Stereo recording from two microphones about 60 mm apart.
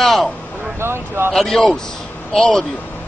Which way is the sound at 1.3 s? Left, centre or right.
Centre.